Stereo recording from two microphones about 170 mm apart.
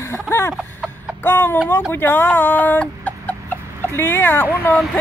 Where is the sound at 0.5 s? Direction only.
Centre (ahead or behind).